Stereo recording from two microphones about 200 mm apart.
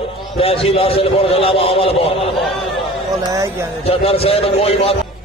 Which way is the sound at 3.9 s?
30° left (ahead or behind).